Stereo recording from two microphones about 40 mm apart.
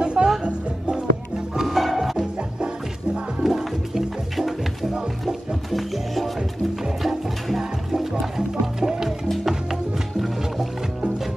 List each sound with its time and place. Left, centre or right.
0.0 s music: right
1.6 s music: centre
3.4 s music: centre
5.7 s music: centre